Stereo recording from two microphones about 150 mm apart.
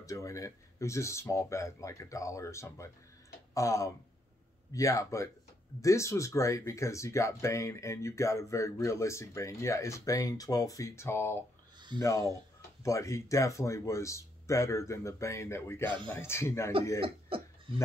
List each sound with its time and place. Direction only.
0.0 s speech: 20° left (ahead or behind)
17.0 s cough: 35° right (ahead or behind)